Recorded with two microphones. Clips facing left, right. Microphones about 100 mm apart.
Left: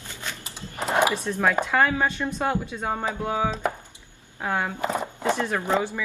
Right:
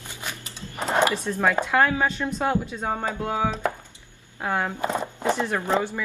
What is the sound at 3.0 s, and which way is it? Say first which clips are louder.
Music: even; 10° left (ahead or behind).